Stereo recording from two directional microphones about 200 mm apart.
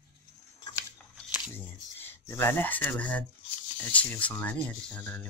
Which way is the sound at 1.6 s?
10° left (ahead or behind).